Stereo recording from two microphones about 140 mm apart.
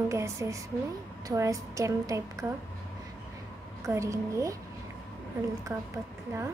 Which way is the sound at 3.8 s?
20° right (ahead or behind).